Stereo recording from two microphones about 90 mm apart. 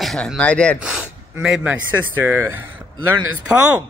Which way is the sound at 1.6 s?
20° right (ahead or behind).